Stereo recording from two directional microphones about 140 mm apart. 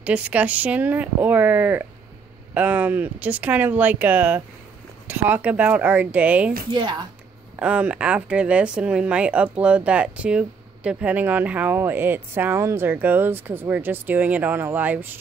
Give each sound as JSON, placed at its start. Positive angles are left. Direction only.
{"t": 0.0, "sound": "speech", "side_deg": -10}
{"t": 6.7, "sound": "a woman's voice", "side_deg": -30}
{"t": 7.5, "sound": "speech", "side_deg": -10}